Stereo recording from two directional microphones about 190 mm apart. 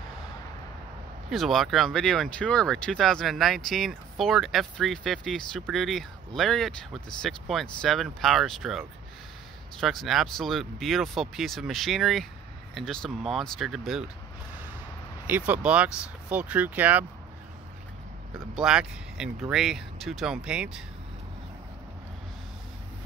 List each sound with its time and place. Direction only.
1.3 s speech: centre (ahead or behind)
15.2 s speech: 10° right (ahead or behind)
18.6 s speech: 5° right (ahead or behind)